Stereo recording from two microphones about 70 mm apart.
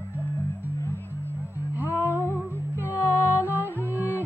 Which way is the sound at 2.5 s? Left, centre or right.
Left.